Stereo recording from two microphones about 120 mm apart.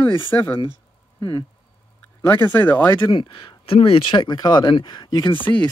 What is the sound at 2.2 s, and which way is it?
Speech, 20° left (ahead or behind).